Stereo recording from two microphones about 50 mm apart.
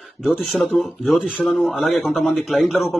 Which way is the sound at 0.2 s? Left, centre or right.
Centre.